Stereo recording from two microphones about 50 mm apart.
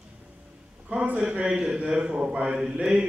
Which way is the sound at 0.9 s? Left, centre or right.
Right.